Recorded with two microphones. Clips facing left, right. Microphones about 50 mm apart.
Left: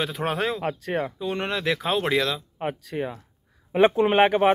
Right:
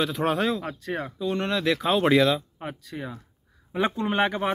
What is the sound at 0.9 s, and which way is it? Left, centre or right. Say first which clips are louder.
Speech: right 2 dB; left.